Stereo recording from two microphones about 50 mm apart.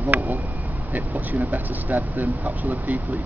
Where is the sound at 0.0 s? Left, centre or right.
Right.